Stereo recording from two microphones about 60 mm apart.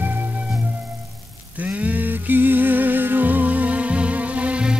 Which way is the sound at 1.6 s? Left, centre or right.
Right.